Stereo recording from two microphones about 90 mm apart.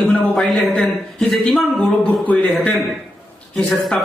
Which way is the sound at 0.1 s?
Centre (ahead or behind).